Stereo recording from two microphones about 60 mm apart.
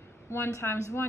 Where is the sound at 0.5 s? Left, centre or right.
Left.